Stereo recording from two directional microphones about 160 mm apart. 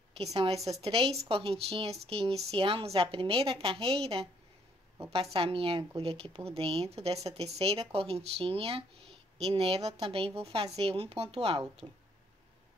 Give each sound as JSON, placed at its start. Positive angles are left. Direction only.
{"t": 0.2, "sound": "speech", "side_deg": -40}
{"t": 11.8, "sound": "speech", "side_deg": -20}